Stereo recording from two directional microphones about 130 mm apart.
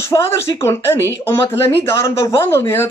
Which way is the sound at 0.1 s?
20° left (ahead or behind).